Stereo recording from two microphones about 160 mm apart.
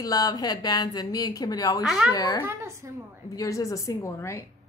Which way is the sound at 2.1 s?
25° left (ahead or behind).